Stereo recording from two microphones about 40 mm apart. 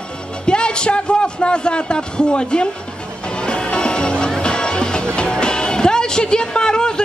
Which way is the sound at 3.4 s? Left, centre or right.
Left.